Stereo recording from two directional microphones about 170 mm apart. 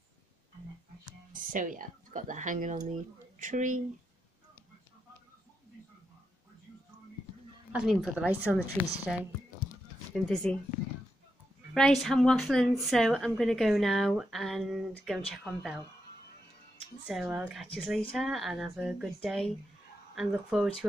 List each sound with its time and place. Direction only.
1.3 s speech: 55° right (ahead or behind)
7.7 s speech: centre (ahead or behind)
11.7 s speech: centre (ahead or behind)
17.1 s speech: 5° right (ahead or behind)